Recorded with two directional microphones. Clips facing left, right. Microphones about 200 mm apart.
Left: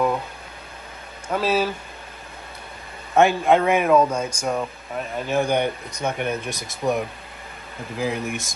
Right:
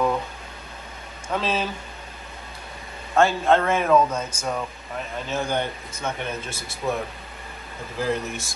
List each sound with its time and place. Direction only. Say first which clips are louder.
1.3 s speech: left 4 dB; 10° left (ahead or behind)
3.2 s speech: left 2 dB; 15° left (ahead or behind)
8.0 s speech: even; 10° left (ahead or behind)